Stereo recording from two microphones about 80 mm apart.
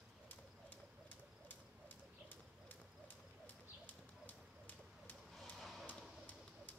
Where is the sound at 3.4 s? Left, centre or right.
Centre.